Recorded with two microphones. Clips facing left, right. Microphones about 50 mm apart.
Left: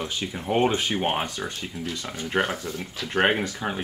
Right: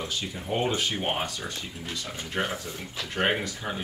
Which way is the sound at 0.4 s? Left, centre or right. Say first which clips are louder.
Left 5 dB; left.